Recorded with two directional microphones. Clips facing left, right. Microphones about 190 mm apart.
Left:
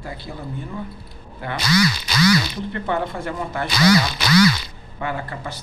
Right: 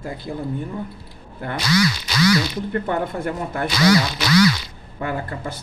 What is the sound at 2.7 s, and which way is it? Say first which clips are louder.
Speech: right 1 dB; 50° right (ahead or behind).